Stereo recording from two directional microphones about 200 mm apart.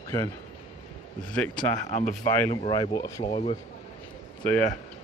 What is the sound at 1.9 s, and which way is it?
Speech, 40° left (ahead or behind).